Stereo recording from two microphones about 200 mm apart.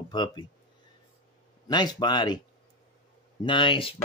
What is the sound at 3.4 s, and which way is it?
Speech, 25° left (ahead or behind).